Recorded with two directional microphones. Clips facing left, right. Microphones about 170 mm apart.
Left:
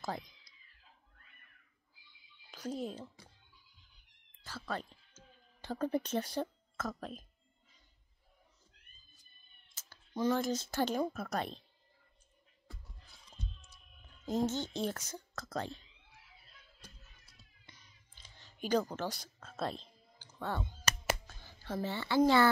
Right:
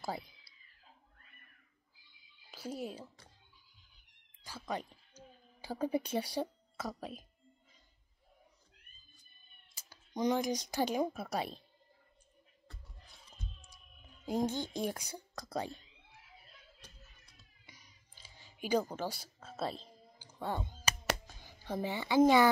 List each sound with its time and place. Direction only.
0.0 s speech: 10° right (ahead or behind)
2.5 s speech: 10° right (ahead or behind)
4.4 s a sound: 15° right (ahead or behind)
9.8 s speech: 15° right (ahead or behind)
14.2 s speech: 10° right (ahead or behind)
17.6 s a sound: 10° right (ahead or behind)
21.3 s speech: 15° right (ahead or behind)